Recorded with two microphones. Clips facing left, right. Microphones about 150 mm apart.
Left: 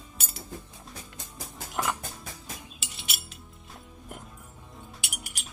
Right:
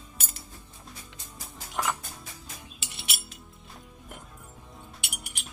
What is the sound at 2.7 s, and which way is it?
Music, centre (ahead or behind).